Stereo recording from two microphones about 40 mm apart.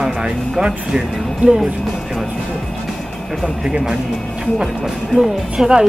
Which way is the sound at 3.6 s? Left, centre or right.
Right.